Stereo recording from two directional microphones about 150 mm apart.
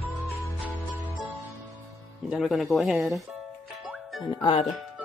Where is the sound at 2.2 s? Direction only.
Centre (ahead or behind).